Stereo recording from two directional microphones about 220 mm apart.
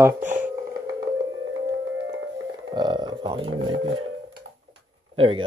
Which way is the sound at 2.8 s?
20° right (ahead or behind).